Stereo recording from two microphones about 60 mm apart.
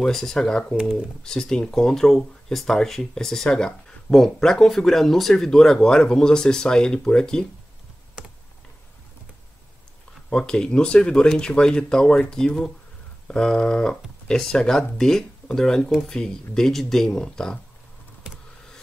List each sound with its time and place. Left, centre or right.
0.0 s speech: centre
8.2 s computer keyboard: centre
10.3 s speech: centre
18.3 s vehicle: centre